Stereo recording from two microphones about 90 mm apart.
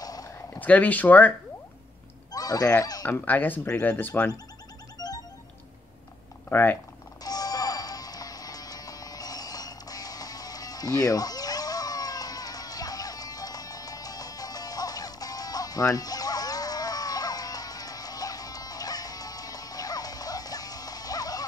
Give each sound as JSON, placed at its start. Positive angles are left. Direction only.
{"t": 0.0, "sound": "a sound", "side_deg": 45}
{"t": 0.6, "sound": "speech", "side_deg": 15}
{"t": 2.3, "sound": "honk", "side_deg": 45}
{"t": 2.8, "sound": "speech", "side_deg": 45}
{"t": 3.1, "sound": "speech", "side_deg": 20}
{"t": 5.0, "sound": "music", "side_deg": 45}
{"t": 6.5, "sound": "speech", "side_deg": 20}
{"t": 7.2, "sound": "music", "side_deg": 45}